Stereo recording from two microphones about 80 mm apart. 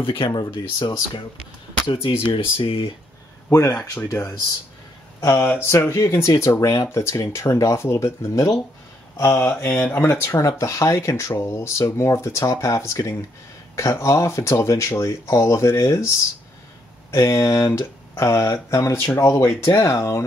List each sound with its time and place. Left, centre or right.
0.0 s speech: left
1.9 s speech: left
3.4 s speech: left
5.2 s speech: left
9.1 s speech: left
9.7 s speech: centre
9.9 s speech: left
17.1 s speech: left